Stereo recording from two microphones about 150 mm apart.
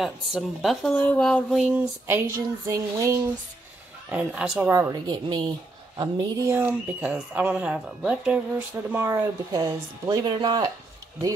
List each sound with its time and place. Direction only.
0.0 s speech: centre (ahead or behind)
1.6 s a woman's voice: 15° right (ahead or behind)
4.1 s a woman's voice: 10° right (ahead or behind)
4.6 s a woman's voice: 20° right (ahead or behind)